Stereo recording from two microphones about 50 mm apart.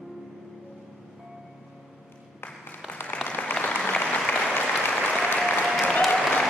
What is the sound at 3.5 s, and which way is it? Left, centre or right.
Applause, left.